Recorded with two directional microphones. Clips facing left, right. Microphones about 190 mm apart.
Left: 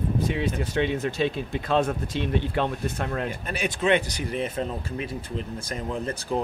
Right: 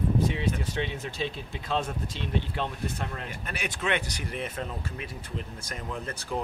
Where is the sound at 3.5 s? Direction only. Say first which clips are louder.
Left 7 dB; 30° left (ahead or behind).